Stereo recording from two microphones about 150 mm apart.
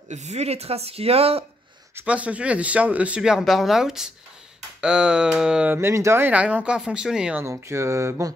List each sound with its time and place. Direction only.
0.1 s speech: 50° right (ahead or behind)
2.0 s speech: 10° right (ahead or behind)
7.4 s a sound: 20° right (ahead or behind)